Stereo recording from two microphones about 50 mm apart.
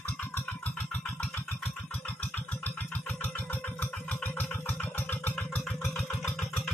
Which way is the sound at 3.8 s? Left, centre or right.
Left.